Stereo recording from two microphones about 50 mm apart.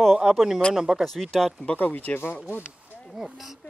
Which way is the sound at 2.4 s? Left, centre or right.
Right.